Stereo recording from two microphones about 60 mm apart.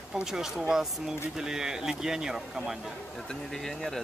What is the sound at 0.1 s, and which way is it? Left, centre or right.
Speech, centre.